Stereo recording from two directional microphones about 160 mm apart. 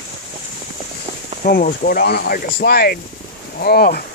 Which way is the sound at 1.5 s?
65° left (ahead or behind).